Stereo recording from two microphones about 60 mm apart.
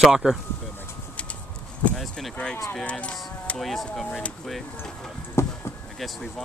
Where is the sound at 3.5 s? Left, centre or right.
Centre.